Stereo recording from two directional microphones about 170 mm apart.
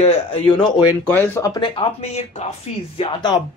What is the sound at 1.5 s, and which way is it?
Speech, 30° left (ahead or behind).